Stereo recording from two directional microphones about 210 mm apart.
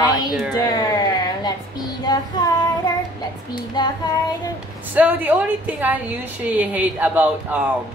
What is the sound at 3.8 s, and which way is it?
Speech, 20° left (ahead or behind).